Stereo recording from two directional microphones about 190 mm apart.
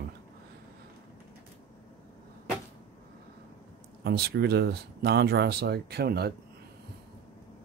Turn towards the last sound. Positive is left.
turn(degrees=-60)  # may be behind; listen again after turning